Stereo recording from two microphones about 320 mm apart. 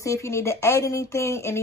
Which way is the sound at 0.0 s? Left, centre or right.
Centre.